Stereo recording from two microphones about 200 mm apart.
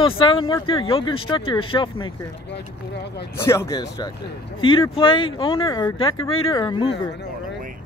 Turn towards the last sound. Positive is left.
turn(degrees=25)  # may be behind; listen again after turning